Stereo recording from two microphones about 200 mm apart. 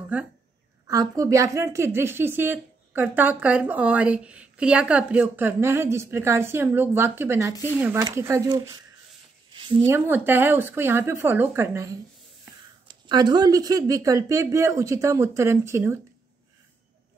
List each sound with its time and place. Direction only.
0.1 s a woman's voice: 5° right (ahead or behind)
9.5 s a sound: 25° right (ahead or behind)
9.8 s a woman's voice: 10° right (ahead or behind)